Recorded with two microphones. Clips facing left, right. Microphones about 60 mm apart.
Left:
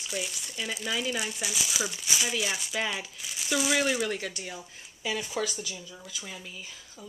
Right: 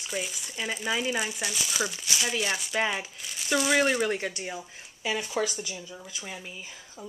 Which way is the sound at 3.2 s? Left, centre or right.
Centre.